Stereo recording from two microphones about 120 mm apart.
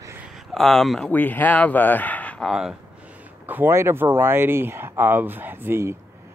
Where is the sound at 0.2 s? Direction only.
Centre (ahead or behind).